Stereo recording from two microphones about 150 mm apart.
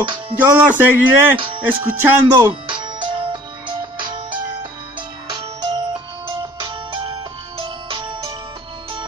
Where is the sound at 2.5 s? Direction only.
35° right (ahead or behind).